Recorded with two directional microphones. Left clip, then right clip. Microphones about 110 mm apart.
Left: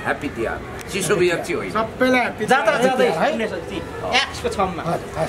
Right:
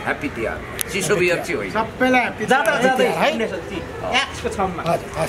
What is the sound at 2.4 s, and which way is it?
Speech, 25° left (ahead or behind).